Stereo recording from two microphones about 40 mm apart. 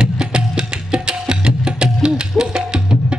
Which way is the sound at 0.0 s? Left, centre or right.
Right.